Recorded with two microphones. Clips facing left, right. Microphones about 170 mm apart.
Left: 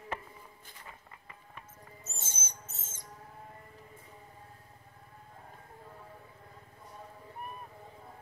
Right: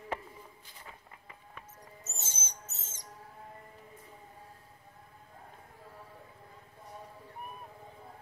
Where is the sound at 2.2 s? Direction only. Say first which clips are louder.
Even; 50° left (ahead or behind).